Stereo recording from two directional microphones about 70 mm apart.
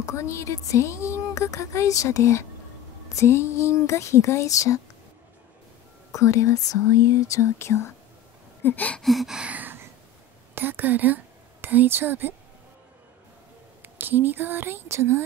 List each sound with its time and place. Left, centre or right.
0.0 s speech: left
6.1 s speech: left
8.6 s gasp: left
9.0 s gasp: centre
9.4 s a sound: right
10.5 s speech: right
13.8 s speech: right